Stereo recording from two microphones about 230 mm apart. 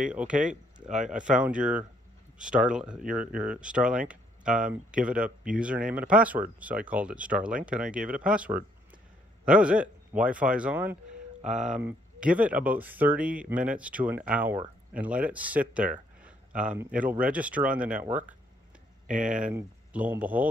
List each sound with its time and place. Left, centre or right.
0.1 s speech: centre
1.4 s speech: centre
19.0 s speech: right
19.4 s speech: centre